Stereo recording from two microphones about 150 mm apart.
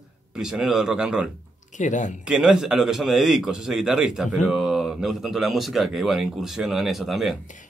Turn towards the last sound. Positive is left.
turn(degrees=0)  # may be behind; listen again after turning